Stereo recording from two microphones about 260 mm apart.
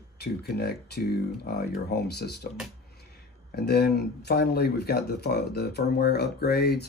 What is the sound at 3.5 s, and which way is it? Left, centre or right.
Speech, left.